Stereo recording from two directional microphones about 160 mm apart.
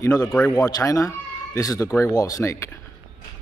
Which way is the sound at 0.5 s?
25° left (ahead or behind).